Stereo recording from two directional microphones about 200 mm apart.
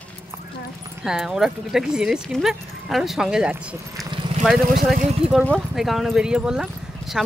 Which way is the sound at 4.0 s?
20° right (ahead or behind).